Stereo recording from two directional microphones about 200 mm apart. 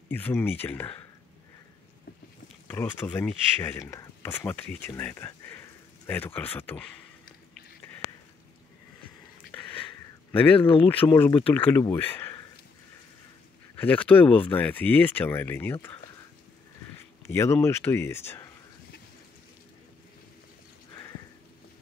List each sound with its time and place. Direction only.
0.1 s speech: 10° left (ahead or behind)
2.7 s speech: 10° left (ahead or behind)
10.3 s speech: 10° left (ahead or behind)
11.0 s speech: 20° left (ahead or behind)
13.7 s speech: 10° left (ahead or behind)
17.3 s speech: 15° left (ahead or behind)